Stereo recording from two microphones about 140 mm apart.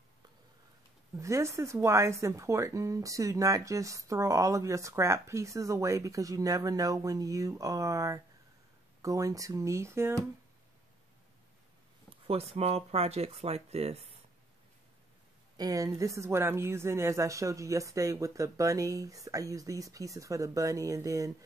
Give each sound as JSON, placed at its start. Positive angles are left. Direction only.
{"t": 1.1, "sound": "speech", "side_deg": -20}
{"t": 12.1, "sound": "speech", "side_deg": -45}
{"t": 15.5, "sound": "speech", "side_deg": -25}